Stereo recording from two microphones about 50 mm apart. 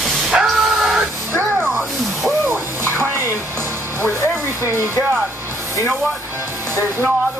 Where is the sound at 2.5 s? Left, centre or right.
Right.